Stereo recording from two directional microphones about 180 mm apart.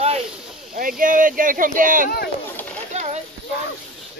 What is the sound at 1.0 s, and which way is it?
Speech, 50° right (ahead or behind).